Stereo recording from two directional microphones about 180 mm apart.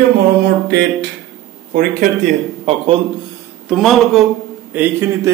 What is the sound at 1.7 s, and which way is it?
Speech, 50° right (ahead or behind).